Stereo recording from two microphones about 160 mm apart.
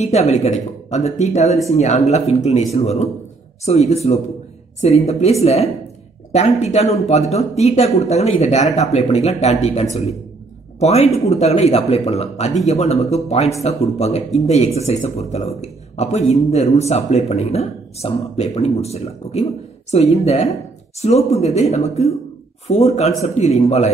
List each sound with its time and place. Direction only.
0.0 s speech: 45° left (ahead or behind)